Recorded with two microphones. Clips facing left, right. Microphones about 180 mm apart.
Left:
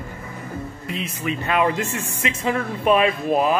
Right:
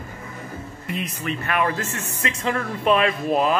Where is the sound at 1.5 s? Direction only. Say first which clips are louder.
Left 3 dB; 20° left (ahead or behind).